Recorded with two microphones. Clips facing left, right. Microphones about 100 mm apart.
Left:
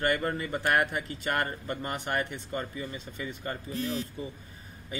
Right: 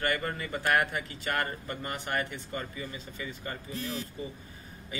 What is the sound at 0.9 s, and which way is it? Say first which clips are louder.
Speech: left 2 dB; 40° left (ahead or behind).